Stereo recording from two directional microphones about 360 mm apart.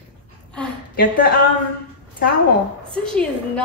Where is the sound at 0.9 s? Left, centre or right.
Left.